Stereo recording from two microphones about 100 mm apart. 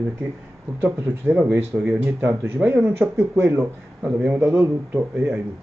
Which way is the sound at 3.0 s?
25° right (ahead or behind).